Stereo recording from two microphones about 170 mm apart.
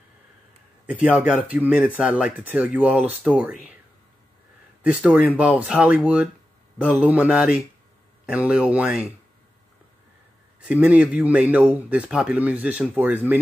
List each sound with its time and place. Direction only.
0.8 s a man's voice: 10° right (ahead or behind)
4.8 s a man's voice: 5° right (ahead or behind)
10.6 s a man's voice: 5° right (ahead or behind)